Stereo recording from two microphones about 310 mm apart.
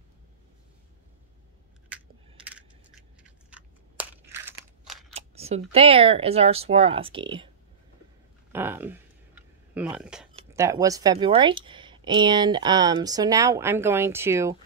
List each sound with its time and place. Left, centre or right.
3.3 s crunch: centre
5.1 s speech: centre
8.5 s a sound: centre
10.3 s speech: centre